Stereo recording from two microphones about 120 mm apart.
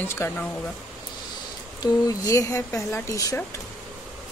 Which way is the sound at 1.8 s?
30° left (ahead or behind).